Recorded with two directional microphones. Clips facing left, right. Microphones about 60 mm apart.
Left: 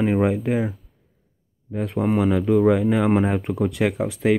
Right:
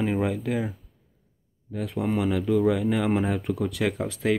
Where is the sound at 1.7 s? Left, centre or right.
Left.